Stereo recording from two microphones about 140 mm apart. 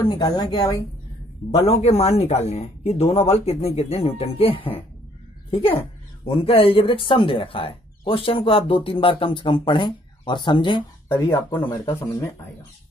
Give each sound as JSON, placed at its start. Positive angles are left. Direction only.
{"t": 0.2, "sound": "speech", "side_deg": 30}
{"t": 1.7, "sound": "speech", "side_deg": 50}
{"t": 11.9, "sound": "speech", "side_deg": 20}